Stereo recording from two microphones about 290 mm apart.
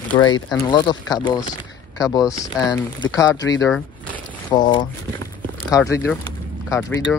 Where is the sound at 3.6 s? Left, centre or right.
Centre.